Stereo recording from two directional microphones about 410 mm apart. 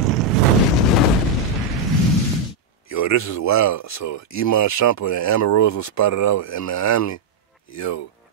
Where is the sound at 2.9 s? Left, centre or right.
Left.